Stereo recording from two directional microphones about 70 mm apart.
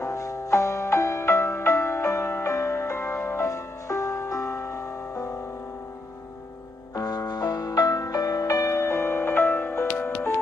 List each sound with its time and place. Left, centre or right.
0.0 s music: left
7.0 s music: left